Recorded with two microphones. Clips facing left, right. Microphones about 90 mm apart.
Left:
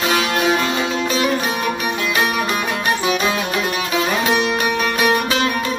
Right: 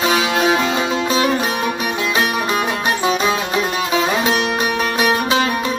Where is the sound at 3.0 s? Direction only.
30° right (ahead or behind).